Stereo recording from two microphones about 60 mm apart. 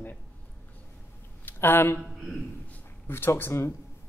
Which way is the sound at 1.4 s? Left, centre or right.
Left.